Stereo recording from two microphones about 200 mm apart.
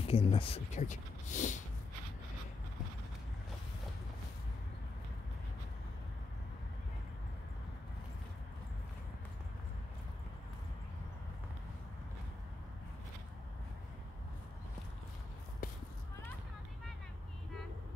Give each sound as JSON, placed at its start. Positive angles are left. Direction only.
{"t": 0.0, "sound": "speech", "side_deg": 30}